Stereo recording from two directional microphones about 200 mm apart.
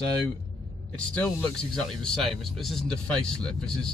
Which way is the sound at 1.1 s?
5° left (ahead or behind).